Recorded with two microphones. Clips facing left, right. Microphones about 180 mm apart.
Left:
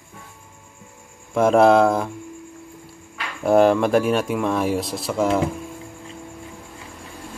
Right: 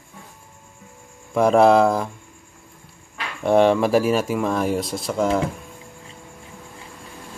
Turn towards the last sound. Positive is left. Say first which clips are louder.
# even
turn(degrees=0)  # may be behind; listen again after turning